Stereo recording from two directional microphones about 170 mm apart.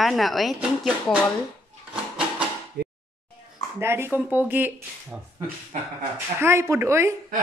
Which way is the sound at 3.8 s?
15° right (ahead or behind).